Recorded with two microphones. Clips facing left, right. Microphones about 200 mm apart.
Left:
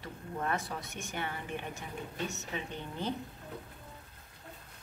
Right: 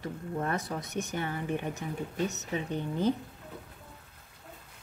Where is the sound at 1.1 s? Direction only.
40° right (ahead or behind).